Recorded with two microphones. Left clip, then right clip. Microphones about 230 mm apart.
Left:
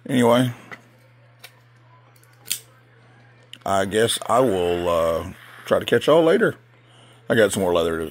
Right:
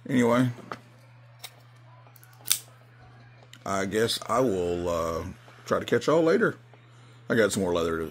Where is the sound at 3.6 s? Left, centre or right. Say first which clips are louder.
Left 7 dB; centre.